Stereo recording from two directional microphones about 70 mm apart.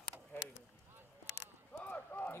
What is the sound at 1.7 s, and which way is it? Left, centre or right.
Clip-clop, left.